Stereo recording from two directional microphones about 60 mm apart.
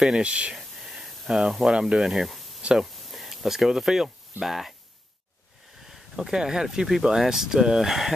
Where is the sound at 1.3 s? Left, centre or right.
Centre.